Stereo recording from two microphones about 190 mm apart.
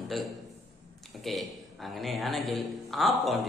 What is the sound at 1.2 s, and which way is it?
A man's voice, centre (ahead or behind).